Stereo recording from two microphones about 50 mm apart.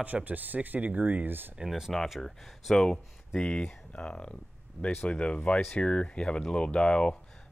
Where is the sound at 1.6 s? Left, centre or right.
Centre.